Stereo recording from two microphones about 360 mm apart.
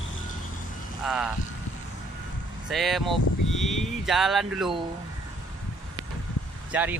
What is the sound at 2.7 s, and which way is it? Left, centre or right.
Speech, centre.